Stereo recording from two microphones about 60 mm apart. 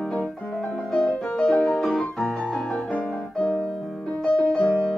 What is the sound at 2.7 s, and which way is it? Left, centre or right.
Music, centre.